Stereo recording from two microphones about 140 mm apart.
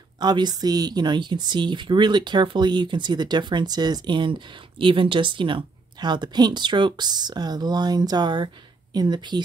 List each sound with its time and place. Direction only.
0.2 s speech: 30° right (ahead or behind)